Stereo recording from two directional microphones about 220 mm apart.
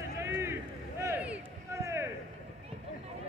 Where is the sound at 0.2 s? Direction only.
10° right (ahead or behind).